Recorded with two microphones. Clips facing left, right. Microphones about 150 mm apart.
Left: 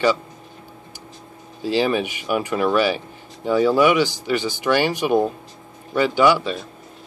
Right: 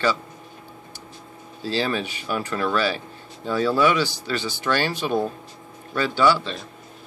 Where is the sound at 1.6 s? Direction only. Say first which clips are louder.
Left 5 dB; 15° left (ahead or behind).